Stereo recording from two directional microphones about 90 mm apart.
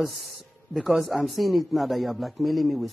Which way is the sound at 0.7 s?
Centre (ahead or behind).